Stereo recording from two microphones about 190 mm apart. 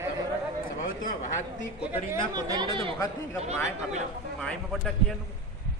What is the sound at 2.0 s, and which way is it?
Speech, 20° right (ahead or behind).